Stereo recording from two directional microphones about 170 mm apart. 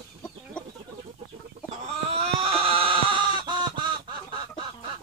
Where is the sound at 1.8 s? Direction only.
35° right (ahead or behind).